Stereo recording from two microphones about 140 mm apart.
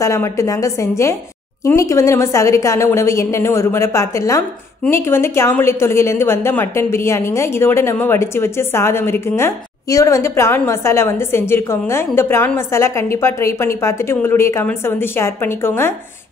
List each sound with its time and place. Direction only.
0.0 s a woman's voice: 20° left (ahead or behind)